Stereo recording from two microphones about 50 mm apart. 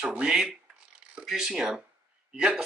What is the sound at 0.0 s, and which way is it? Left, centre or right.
Speech, centre.